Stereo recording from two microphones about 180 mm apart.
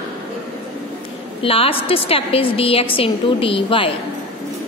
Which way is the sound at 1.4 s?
30° left (ahead or behind).